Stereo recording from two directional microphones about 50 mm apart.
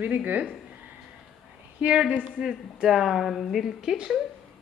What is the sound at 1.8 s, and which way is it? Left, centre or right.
Speech, right.